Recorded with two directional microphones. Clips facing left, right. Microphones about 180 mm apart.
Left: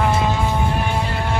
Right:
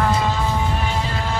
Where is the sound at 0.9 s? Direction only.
60° left (ahead or behind).